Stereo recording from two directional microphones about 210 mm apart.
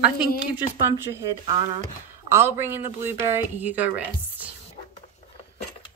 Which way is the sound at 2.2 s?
10° right (ahead or behind).